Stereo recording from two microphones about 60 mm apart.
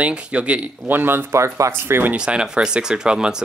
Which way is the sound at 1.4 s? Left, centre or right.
Right.